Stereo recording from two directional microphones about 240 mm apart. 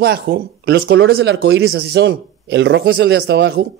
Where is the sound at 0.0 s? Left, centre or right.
Right.